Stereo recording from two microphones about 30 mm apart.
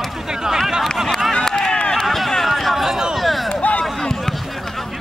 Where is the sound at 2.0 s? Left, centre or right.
Centre.